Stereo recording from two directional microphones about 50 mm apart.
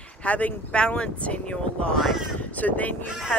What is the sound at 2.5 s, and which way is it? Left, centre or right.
Speech, left.